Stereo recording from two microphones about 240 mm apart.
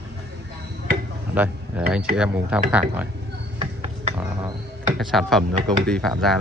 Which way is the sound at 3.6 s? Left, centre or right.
Right.